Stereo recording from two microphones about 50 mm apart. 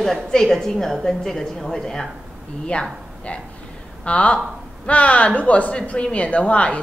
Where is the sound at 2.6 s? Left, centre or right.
Left.